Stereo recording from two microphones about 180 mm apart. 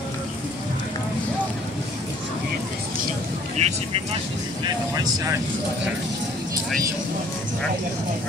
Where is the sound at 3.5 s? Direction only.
35° right (ahead or behind).